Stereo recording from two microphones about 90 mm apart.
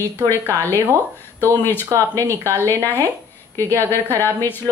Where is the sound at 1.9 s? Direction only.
35° right (ahead or behind).